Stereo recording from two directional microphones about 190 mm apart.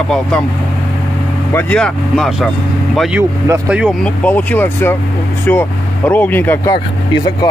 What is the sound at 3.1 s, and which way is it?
Speech, 10° right (ahead or behind).